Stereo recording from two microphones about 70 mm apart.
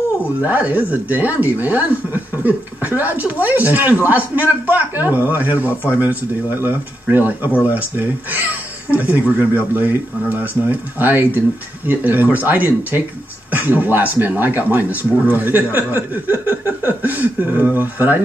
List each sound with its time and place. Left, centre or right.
0.4 s speech: right